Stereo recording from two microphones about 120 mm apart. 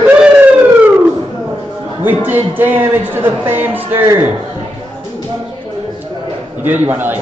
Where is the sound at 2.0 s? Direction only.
15° right (ahead or behind).